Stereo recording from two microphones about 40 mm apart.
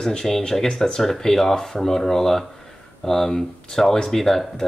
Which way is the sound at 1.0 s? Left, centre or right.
Centre.